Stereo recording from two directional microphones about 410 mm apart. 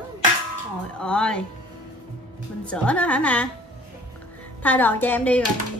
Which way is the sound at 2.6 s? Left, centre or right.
Centre.